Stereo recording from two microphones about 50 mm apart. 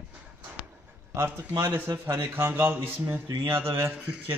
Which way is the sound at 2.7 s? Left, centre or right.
Right.